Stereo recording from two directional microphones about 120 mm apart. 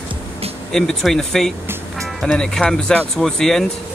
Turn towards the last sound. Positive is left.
turn(degrees=5)  # may be behind; listen again after turning